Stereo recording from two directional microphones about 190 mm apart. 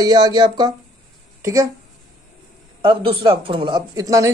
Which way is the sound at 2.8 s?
25° right (ahead or behind).